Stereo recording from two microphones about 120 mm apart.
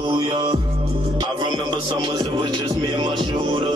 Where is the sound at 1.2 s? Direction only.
40° right (ahead or behind).